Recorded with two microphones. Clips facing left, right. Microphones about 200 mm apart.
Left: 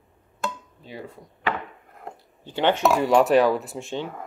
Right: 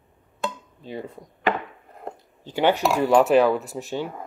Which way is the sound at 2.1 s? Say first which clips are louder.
Right 2 dB; 10° right (ahead or behind).